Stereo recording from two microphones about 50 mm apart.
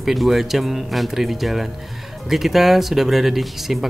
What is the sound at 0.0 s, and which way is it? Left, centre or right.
Speech, centre.